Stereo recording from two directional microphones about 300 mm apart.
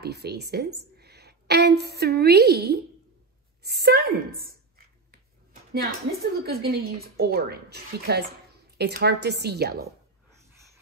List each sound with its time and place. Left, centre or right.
0.0 s a woman's voice: right
3.6 s a sound: right
6.4 s speech: right